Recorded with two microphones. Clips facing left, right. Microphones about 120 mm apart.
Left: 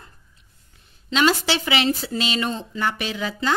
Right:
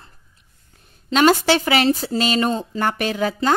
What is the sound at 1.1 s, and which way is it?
Speech, 50° right (ahead or behind).